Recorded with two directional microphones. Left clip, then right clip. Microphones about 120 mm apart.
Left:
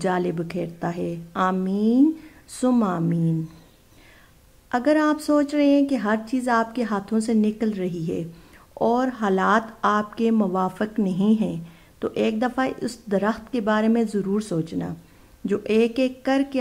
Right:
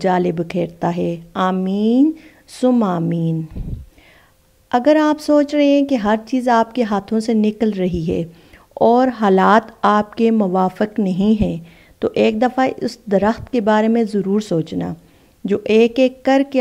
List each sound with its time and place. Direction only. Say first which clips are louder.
0.0 s a woman's voice: right 7 dB; 25° right (ahead or behind)
2.5 s speech: right 6 dB; 20° right (ahead or behind)
2.8 s a woman's voice: right 5 dB; 30° right (ahead or behind)
4.6 s a woman's voice: right 6 dB; 30° right (ahead or behind)